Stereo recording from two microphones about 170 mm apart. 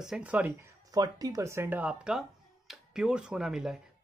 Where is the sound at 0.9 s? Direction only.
20° right (ahead or behind).